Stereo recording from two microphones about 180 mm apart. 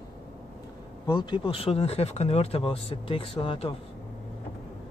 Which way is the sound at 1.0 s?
25° left (ahead or behind).